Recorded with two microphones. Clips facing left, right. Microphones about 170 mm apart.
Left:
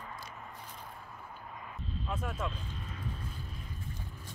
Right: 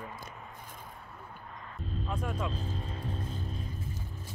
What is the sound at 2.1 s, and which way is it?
Speech, 5° left (ahead or behind).